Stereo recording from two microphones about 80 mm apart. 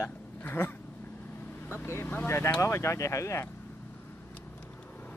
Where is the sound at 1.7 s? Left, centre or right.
Left.